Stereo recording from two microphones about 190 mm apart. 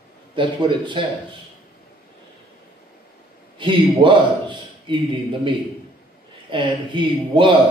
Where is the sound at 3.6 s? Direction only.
25° right (ahead or behind).